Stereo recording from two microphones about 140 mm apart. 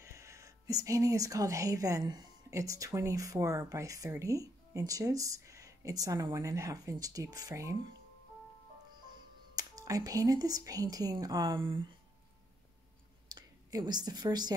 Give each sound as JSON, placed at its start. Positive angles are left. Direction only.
{"t": 0.0, "sound": "speech", "side_deg": -20}
{"t": 9.6, "sound": "speech", "side_deg": -25}
{"t": 11.6, "sound": "speech", "side_deg": -40}
{"t": 13.3, "sound": "speech", "side_deg": -30}